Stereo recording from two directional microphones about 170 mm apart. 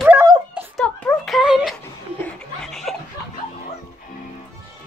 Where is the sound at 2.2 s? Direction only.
Centre (ahead or behind).